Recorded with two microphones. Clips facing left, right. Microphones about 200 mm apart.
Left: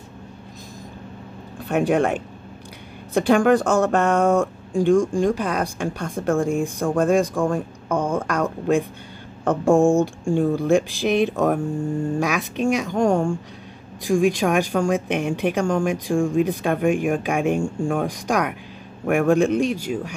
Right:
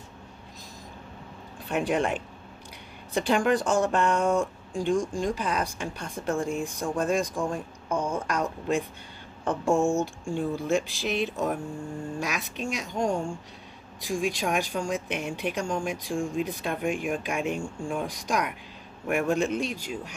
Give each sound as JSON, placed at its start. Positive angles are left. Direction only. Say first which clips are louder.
{"t": 1.7, "sound": "speech", "louder": "left 7 dB", "side_deg": 45}
{"t": 7.9, "sound": "speech", "louder": "left 6 dB", "side_deg": 75}
{"t": 8.3, "sound": "speech", "louder": "left 7 dB", "side_deg": 50}
{"t": 14.0, "sound": "speech", "louder": "left 9 dB", "side_deg": 50}